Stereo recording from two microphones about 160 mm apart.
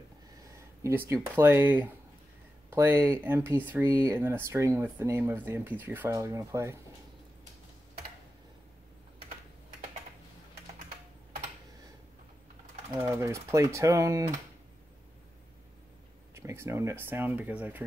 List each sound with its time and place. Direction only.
0.6 s speech: 15° right (ahead or behind)
13.0 s speech: 15° right (ahead or behind)
16.3 s speech: 15° right (ahead or behind)